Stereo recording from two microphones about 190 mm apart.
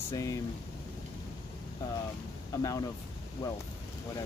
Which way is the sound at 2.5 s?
20° left (ahead or behind).